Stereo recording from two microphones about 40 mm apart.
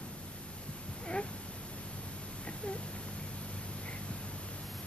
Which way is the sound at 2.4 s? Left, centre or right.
Left.